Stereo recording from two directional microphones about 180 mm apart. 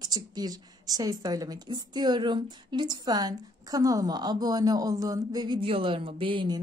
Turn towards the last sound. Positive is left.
turn(degrees=-30)  # may be behind; listen again after turning